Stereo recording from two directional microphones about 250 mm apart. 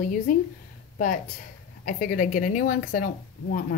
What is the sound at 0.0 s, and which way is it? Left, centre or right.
Speech, left.